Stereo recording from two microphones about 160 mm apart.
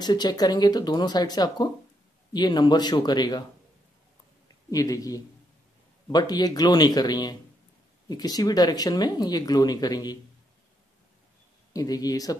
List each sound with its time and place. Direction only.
0.0 s speech: 25° left (ahead or behind)
4.6 s speech: 20° left (ahead or behind)
11.7 s speech: 25° left (ahead or behind)